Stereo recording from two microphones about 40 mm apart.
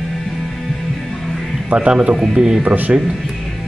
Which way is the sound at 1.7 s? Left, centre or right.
Right.